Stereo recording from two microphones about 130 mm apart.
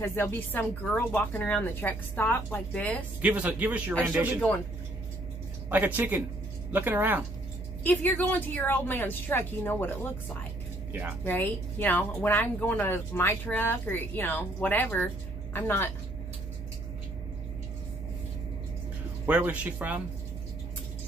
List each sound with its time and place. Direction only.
0.0 s speech: 15° left (ahead or behind)
3.2 s speech: 10° right (ahead or behind)
5.7 s speech: 15° right (ahead or behind)
7.8 s speech: 15° left (ahead or behind)
10.9 s speech: 10° right (ahead or behind)
11.2 s speech: 15° left (ahead or behind)
19.2 s speech: 10° right (ahead or behind)